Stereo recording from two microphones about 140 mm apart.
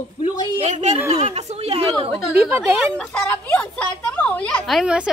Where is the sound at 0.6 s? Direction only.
55° right (ahead or behind).